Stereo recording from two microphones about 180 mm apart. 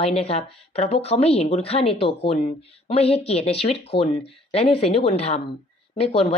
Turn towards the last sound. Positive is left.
turn(degrees=30)  # may be behind; listen again after turning